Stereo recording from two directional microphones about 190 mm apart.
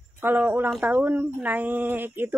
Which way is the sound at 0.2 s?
10° right (ahead or behind).